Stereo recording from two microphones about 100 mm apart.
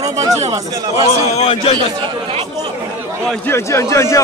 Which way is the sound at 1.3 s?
80° left.